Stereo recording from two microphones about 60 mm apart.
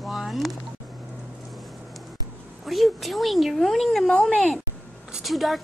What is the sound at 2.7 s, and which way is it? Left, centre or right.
A woman's voice, centre.